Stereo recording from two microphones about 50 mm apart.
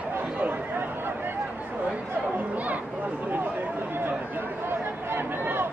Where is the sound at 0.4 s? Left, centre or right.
Right.